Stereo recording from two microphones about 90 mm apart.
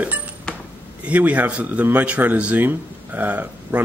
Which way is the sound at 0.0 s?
15° right (ahead or behind).